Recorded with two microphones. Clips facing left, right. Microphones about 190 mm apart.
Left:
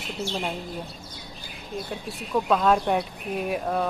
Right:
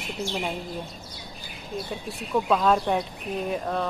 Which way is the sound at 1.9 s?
Centre (ahead or behind).